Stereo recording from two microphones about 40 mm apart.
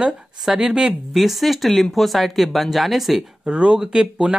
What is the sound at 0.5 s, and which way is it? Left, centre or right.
Speech, right.